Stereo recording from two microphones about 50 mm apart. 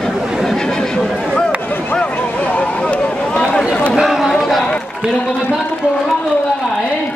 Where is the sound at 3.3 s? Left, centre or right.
Centre.